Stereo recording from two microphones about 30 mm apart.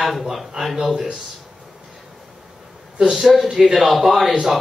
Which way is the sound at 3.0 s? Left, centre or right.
Centre.